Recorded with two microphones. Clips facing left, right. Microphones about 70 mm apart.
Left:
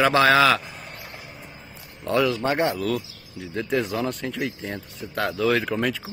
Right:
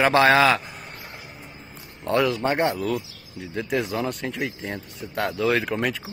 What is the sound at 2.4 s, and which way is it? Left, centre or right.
Speech, right.